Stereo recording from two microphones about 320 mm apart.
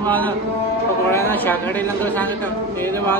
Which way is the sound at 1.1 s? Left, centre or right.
Centre.